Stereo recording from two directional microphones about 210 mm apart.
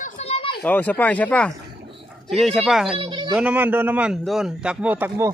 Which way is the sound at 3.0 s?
25° right (ahead or behind).